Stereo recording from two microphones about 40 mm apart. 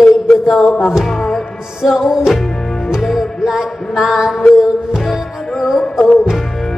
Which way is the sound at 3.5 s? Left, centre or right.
Centre.